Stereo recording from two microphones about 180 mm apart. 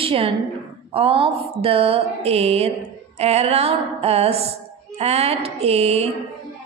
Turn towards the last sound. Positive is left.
turn(degrees=-35)  # may be behind; listen again after turning